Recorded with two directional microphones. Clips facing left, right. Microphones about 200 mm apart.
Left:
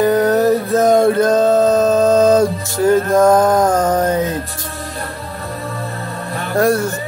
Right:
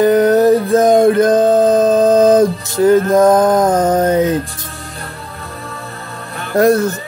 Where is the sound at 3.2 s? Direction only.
20° right (ahead or behind).